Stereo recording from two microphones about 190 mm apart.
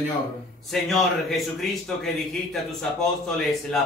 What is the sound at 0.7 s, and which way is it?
Speech, centre (ahead or behind).